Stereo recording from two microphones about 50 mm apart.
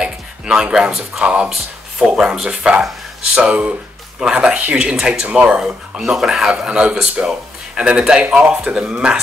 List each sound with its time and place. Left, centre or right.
0.0 s a sound: centre
1.2 s speech: right
2.0 s speech: centre
3.3 s speech: right
6.0 s speech: centre
6.5 s speech: centre